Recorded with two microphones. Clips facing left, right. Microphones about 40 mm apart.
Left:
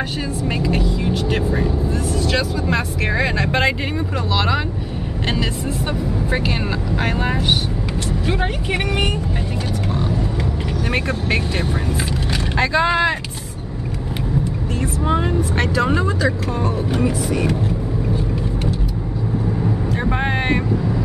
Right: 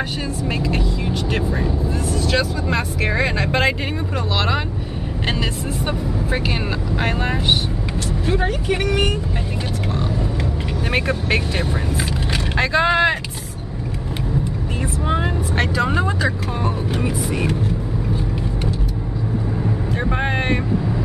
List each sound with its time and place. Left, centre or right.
0.5 s speech: centre
7.0 s speech: centre
8.3 s speech: left
10.9 s speech: centre
15.0 s speech: centre